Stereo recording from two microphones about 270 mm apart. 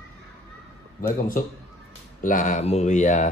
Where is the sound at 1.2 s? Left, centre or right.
Left.